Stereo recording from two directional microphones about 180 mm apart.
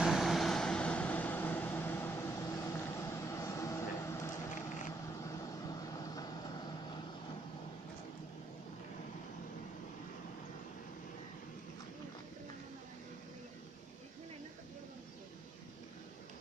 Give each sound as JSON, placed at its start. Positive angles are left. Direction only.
{"t": 0.0, "sound": "vehicle", "side_deg": 0}